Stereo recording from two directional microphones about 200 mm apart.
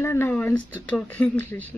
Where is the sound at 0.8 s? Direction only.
5° left (ahead or behind).